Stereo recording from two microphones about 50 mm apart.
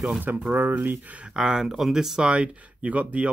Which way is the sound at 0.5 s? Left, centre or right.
Right.